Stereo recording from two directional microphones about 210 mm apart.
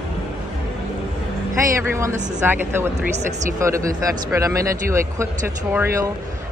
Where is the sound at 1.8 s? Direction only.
15° right (ahead or behind).